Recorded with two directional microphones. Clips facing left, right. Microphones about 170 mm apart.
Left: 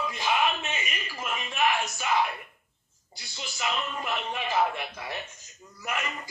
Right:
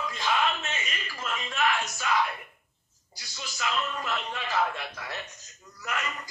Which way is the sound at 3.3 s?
20° left (ahead or behind).